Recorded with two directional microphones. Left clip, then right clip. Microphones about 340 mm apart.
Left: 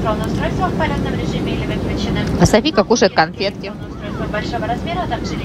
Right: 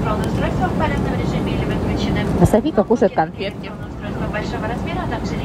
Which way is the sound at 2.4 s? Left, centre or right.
Right.